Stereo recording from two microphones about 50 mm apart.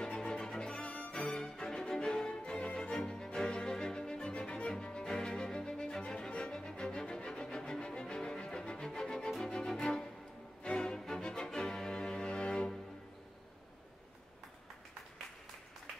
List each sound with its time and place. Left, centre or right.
0.0 s music: centre